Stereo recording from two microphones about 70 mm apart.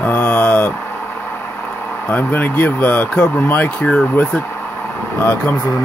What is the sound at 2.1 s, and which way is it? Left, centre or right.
Speech, left.